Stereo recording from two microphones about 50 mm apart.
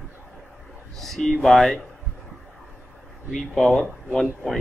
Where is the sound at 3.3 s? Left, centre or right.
Centre.